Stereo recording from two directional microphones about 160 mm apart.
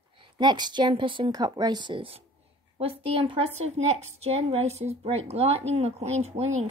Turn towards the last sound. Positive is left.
turn(degrees=-45)  # may be behind; listen again after turning